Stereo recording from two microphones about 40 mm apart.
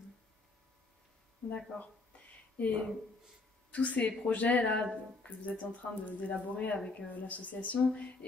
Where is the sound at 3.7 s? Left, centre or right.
Left.